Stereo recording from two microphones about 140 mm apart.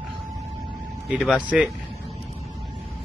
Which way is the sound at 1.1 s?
5° right (ahead or behind).